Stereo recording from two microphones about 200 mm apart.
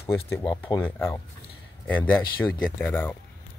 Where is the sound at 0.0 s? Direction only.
10° left (ahead or behind).